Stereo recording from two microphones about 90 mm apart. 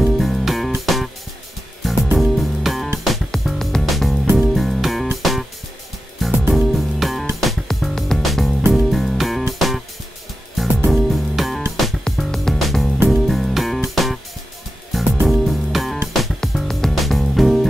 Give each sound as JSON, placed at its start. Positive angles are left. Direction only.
{"t": 0.0, "sound": "music", "side_deg": 0}